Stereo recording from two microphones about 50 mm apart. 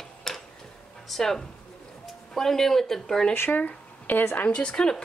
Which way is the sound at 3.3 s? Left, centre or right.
Left.